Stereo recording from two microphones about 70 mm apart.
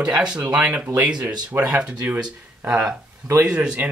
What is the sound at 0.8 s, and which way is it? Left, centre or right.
Speech, right.